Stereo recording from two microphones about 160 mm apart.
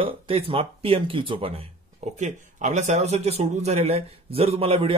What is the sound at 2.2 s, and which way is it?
A man's voice, 45° right (ahead or behind).